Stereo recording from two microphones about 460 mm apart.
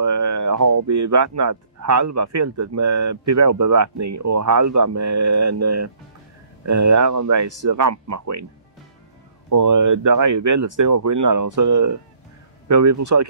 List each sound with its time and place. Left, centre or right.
0.0 s speech: right
9.5 s speech: right